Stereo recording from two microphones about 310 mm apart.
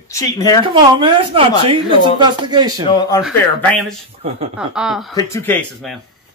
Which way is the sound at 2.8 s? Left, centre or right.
Centre.